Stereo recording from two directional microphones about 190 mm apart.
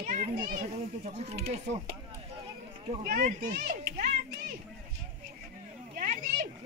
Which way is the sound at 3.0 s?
45° right (ahead or behind).